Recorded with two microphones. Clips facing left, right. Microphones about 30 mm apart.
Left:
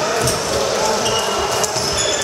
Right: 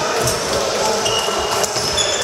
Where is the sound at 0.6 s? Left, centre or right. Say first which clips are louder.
Left 1 dB; centre.